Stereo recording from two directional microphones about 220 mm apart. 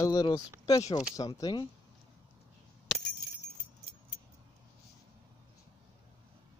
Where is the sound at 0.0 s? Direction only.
15° left (ahead or behind).